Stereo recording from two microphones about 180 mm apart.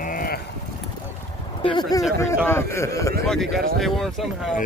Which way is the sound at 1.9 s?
20° left (ahead or behind).